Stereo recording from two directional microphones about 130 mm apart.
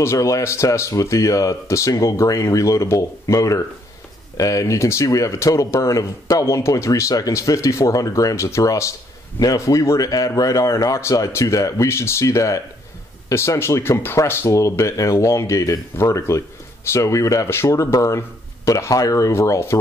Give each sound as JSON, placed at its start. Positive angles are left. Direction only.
{"t": 0.0, "sound": "speech", "side_deg": 20}